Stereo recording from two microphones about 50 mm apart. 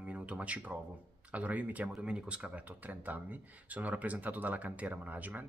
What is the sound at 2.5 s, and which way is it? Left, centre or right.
Speech, right.